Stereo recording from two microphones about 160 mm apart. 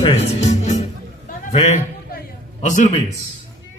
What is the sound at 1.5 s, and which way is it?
A man's voice, 45° left (ahead or behind).